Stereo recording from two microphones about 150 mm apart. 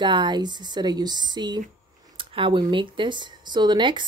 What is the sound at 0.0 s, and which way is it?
Speech, 30° right (ahead or behind).